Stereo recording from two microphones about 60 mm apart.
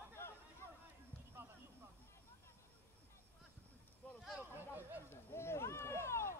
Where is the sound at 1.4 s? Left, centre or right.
Right.